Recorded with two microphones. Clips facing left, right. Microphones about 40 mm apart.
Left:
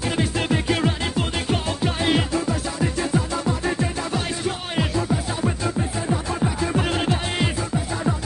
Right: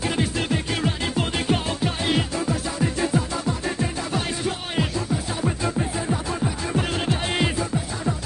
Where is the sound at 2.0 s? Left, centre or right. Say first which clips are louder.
Left 3 dB; centre.